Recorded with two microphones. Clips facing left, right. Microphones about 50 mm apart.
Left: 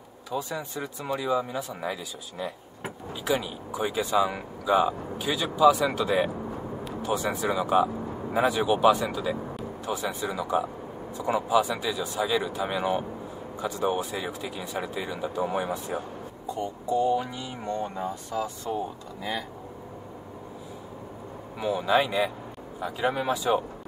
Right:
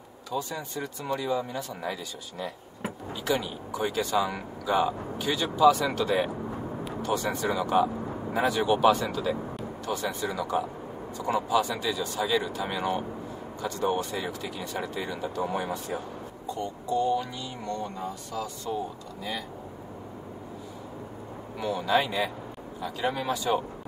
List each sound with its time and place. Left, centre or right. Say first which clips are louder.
0.3 s speech: left 1 dB; centre
9.2 s vehicle: even; centre
9.8 s speech: even; centre; by 18.8 s left
21.5 s speech: left 2 dB; centre
22.8 s speech: left 2 dB; left